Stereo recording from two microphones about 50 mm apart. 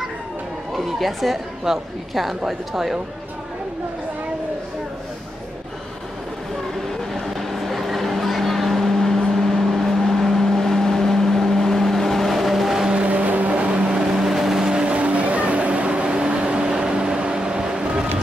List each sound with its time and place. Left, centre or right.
0.7 s a woman's voice: centre
7.2 s vehicle: centre
12.9 s vehicle: right
13.8 s vehicle: centre